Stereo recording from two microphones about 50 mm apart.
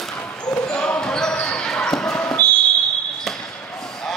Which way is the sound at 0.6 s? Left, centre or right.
Left.